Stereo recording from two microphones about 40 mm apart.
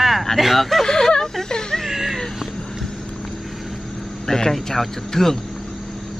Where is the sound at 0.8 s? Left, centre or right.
Centre.